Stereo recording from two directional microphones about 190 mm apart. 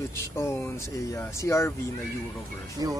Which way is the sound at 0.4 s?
15° left (ahead or behind).